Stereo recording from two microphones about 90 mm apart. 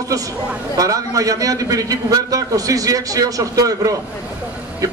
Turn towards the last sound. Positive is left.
turn(degrees=-40)  # may be behind; listen again after turning